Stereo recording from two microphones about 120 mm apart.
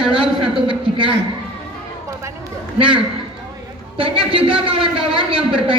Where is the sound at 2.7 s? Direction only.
45° right (ahead or behind).